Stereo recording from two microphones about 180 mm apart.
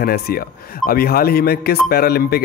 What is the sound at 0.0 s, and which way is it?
Speech, 55° left (ahead or behind).